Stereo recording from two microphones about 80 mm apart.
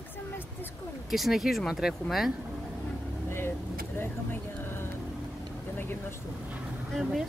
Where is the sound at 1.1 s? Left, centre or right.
Centre.